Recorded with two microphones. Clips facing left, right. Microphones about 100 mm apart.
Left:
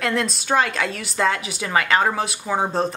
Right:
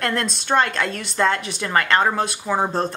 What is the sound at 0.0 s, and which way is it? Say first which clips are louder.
A woman's voice: left 1 dB; centre (ahead or behind).